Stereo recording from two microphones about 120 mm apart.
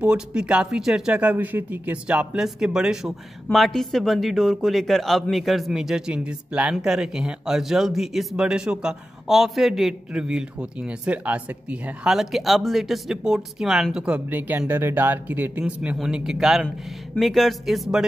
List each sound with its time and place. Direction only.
0.0 s a man's voice: 10° right (ahead or behind)